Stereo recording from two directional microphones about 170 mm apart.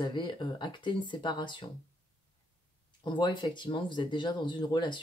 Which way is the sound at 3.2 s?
25° left (ahead or behind).